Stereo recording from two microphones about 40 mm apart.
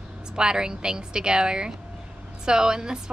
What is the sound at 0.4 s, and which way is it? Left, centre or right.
A woman's voice, centre.